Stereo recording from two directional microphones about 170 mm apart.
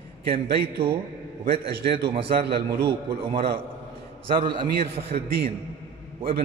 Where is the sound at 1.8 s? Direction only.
70° right (ahead or behind).